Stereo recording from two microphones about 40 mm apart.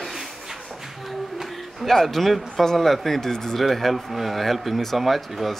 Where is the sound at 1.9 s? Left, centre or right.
Centre.